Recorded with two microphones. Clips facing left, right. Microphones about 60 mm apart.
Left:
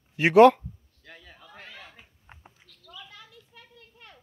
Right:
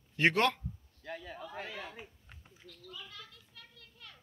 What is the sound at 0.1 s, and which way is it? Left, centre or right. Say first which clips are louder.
Speech: left 12 dB; centre.